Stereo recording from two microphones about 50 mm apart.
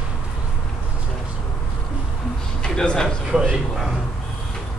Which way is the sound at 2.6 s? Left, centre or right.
Centre.